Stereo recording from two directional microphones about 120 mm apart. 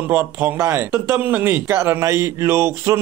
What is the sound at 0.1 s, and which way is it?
Speech, 15° right (ahead or behind).